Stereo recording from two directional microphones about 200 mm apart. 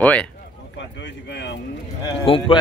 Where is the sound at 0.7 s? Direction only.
65° left (ahead or behind).